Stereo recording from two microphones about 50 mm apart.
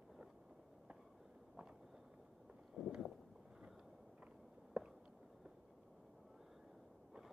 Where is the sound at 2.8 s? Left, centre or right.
Centre.